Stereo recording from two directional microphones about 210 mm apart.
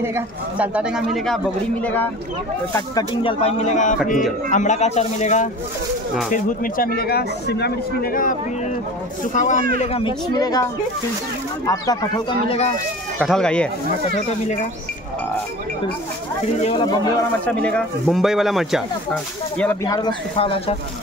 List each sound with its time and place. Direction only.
0.0 s a man's voice: 10° right (ahead or behind); by 2.0 s 5° left (ahead or behind)
2.7 s a man's voice: 20° left (ahead or behind)
9.8 s speech: 25° left (ahead or behind)
13.2 s a man's voice: 5° left (ahead or behind)
16.6 s speech: 25° left (ahead or behind)
17.5 s a man's voice: 5° left (ahead or behind)
19.6 s speech: 10° left (ahead or behind); by 20.7 s 25° left (ahead or behind)